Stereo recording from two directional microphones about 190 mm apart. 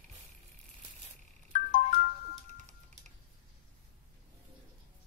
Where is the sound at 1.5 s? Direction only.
45° left (ahead or behind).